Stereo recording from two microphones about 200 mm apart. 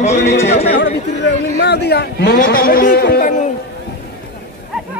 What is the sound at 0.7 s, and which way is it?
Chatter, 60° left (ahead or behind).